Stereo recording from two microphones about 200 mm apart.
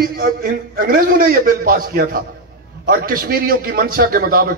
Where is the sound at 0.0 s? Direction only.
50° right (ahead or behind).